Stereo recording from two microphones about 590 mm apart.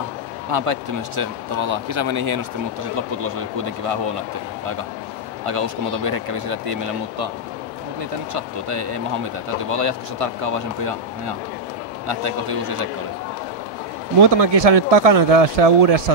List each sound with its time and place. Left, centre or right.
0.5 s speech: right
5.4 s speech: right
8.3 s speech: right
14.4 s speech: right